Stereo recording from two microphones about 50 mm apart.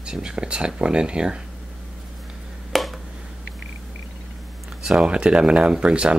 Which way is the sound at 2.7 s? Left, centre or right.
Centre.